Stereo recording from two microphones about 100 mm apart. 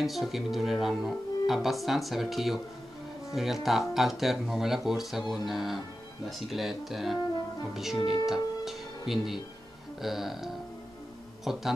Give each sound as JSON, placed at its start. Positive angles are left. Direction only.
{"t": 0.0, "sound": "speech", "side_deg": 0}
{"t": 8.0, "sound": "speech", "side_deg": 50}
{"t": 8.3, "sound": "speech", "side_deg": -5}